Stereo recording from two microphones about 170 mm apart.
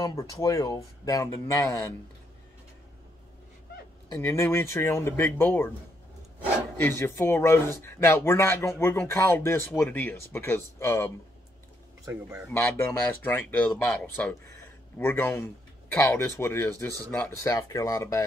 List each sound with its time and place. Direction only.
0.0 s speech: 20° left (ahead or behind)
4.2 s speech: 15° left (ahead or behind)
6.8 s speech: 15° left (ahead or behind)
12.1 s speech: 10° right (ahead or behind)
12.4 s speech: 15° left (ahead or behind)